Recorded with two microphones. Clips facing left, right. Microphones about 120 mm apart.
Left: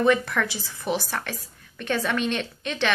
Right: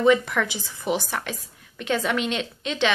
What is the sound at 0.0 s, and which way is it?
A woman's voice, 15° right (ahead or behind).